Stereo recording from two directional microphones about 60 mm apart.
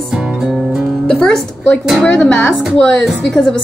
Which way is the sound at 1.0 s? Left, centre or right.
Centre.